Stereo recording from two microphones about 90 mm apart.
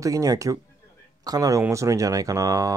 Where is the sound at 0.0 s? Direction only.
40° right (ahead or behind).